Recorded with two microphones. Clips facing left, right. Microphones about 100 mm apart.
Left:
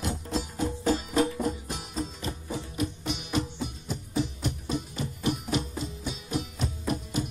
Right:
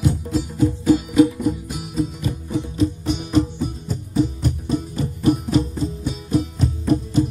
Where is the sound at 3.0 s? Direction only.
40° right (ahead or behind).